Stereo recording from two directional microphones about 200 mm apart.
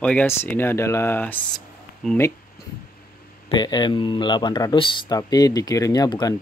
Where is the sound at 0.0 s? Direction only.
5° left (ahead or behind).